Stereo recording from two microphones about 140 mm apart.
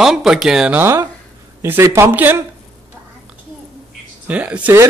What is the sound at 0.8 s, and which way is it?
Speech, 20° right (ahead or behind).